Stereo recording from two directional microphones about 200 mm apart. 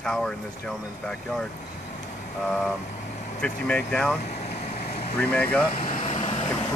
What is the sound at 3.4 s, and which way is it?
Speech, 5° left (ahead or behind).